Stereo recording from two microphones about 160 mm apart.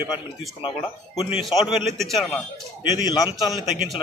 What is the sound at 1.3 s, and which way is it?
A man's voice, centre (ahead or behind).